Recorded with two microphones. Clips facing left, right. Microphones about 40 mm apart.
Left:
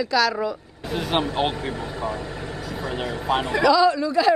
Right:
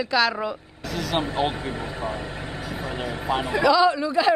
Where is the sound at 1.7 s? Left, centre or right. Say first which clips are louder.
Left 1 dB; right.